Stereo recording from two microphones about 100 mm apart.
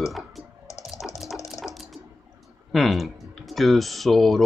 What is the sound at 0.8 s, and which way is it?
Water, 5° right (ahead or behind).